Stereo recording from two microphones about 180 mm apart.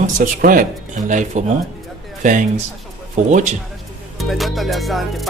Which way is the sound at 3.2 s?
45° right (ahead or behind).